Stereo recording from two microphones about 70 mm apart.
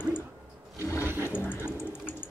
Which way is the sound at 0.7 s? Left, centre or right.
Left.